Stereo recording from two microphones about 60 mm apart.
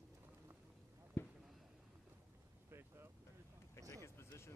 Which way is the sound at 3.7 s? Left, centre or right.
Left.